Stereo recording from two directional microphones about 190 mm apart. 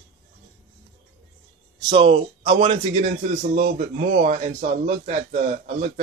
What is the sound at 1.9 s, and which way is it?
A man's voice, 25° right (ahead or behind).